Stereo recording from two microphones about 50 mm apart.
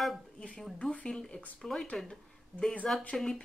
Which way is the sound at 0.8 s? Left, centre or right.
Left.